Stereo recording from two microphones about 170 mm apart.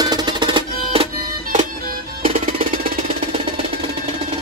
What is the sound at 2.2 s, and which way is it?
Music, 35° right (ahead or behind).